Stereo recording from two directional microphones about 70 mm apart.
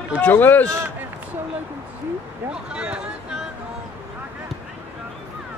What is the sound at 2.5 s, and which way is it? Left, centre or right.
Speech, centre.